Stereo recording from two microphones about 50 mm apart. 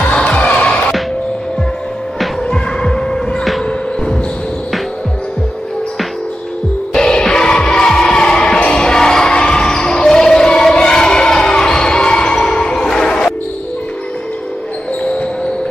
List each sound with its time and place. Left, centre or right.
0.1 s music: left
2.4 s hum: centre
6.9 s music: centre